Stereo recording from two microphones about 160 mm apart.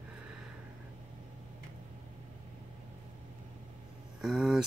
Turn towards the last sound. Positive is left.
turn(degrees=0)  # may be behind; listen again after turning